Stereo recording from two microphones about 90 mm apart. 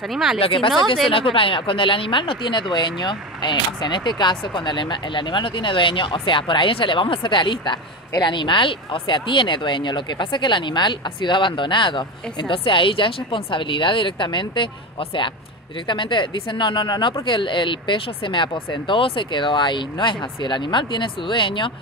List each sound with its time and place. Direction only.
0.1 s speech: 5° right (ahead or behind)
0.4 s speech: 85° left